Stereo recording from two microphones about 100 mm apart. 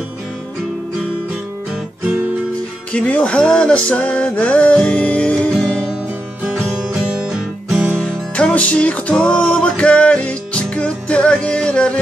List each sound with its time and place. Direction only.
2.9 s music: 10° left (ahead or behind)
6.9 s music: 5° right (ahead or behind)
7.9 s music: 10° left (ahead or behind)